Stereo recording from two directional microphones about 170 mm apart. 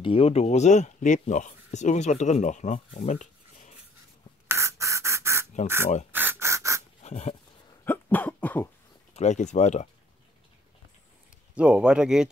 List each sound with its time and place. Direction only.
0.0 s speech: 35° left (ahead or behind)
4.5 s beatboxing: 15° right (ahead or behind)
6.1 s a sound: 15° right (ahead or behind)
7.0 s dog: 40° left (ahead or behind)
7.8 s cough: 10° left (ahead or behind)
9.1 s speech: 40° left (ahead or behind)
11.5 s speech: 5° right (ahead or behind)